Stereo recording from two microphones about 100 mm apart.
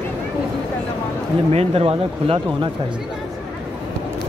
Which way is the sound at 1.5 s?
85° right.